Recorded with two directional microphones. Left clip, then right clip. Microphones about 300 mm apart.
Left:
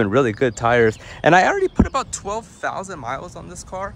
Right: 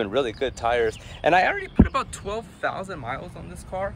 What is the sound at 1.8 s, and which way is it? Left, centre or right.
Speech, centre.